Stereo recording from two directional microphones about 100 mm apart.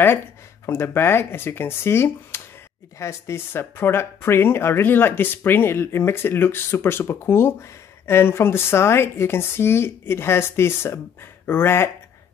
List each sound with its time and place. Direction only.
0.7 s speech: 25° left (ahead or behind)
2.3 s a sound: 25° left (ahead or behind)
3.0 s speech: 30° left (ahead or behind)